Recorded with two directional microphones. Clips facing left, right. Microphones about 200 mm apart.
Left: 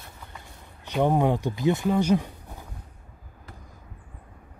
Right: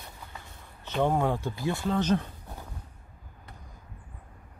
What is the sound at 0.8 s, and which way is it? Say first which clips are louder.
Speech: left 4 dB; 15° left (ahead or behind).